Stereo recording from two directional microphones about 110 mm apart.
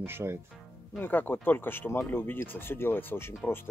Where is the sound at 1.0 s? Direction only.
20° left (ahead or behind).